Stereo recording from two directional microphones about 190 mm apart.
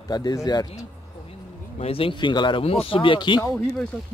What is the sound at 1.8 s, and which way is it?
Speech, 30° left (ahead or behind).